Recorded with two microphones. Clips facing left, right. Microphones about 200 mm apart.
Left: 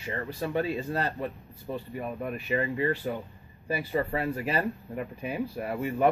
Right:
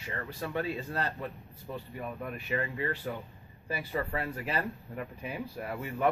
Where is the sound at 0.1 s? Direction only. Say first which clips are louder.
Left 5 dB; 30° left (ahead or behind).